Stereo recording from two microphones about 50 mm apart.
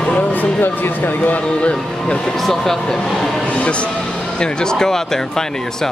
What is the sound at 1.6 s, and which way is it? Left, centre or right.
Speech, left.